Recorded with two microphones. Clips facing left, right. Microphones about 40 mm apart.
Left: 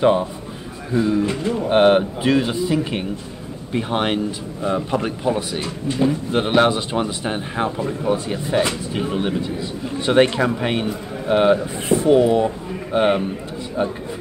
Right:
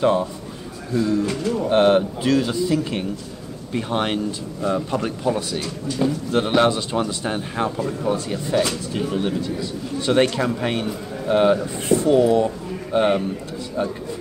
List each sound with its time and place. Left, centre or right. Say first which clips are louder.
0.0 s speech: left 2 dB; left